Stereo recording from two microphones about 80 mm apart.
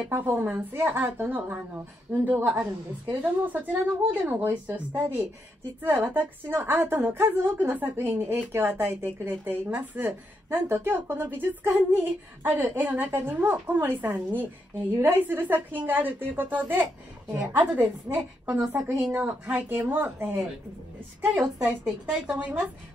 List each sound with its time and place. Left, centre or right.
0.1 s a woman's voice: right